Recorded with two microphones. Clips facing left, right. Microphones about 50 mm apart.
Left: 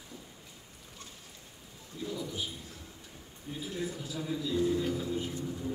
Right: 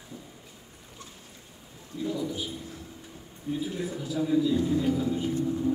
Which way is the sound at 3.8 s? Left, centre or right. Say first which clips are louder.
Right 6 dB; centre.